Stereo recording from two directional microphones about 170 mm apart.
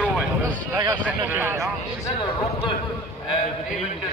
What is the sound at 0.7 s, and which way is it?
Speech, 25° right (ahead or behind).